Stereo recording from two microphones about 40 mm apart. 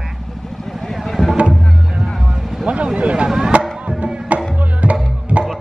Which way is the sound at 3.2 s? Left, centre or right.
Centre.